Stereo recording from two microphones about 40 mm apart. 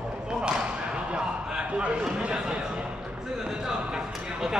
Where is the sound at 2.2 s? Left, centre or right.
Right.